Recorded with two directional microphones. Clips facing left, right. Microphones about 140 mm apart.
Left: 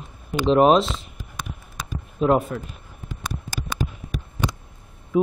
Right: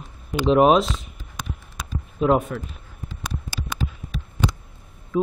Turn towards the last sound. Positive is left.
turn(degrees=15)  # may be behind; listen again after turning